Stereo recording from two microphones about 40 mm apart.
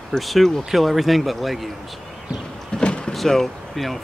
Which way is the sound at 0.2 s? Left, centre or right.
Centre.